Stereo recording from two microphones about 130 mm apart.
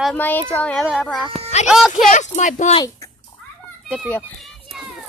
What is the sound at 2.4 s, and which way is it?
Speech, 70° left (ahead or behind).